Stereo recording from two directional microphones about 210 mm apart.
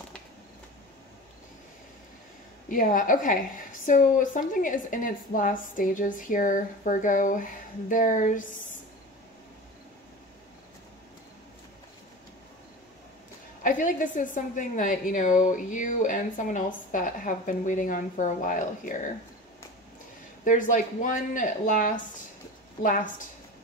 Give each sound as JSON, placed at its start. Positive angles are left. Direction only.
{"t": 2.7, "sound": "a woman's voice", "side_deg": 40}
{"t": 13.6, "sound": "a woman's voice", "side_deg": 40}
{"t": 20.4, "sound": "a woman's voice", "side_deg": 40}